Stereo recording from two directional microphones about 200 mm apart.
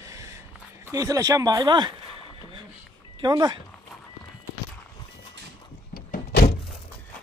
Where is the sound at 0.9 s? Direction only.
15° right (ahead or behind).